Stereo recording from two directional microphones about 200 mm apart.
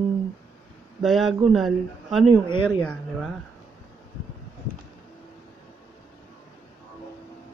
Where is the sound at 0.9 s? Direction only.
Centre (ahead or behind).